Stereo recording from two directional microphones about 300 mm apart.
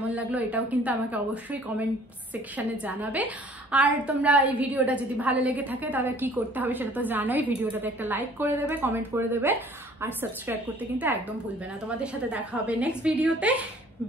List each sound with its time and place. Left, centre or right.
0.1 s a woman's voice: centre